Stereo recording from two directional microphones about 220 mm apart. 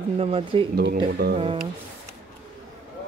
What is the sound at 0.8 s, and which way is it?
Speech, 45° right (ahead or behind).